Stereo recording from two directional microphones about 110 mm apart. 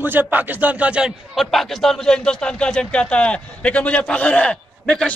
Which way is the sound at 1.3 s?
Centre (ahead or behind).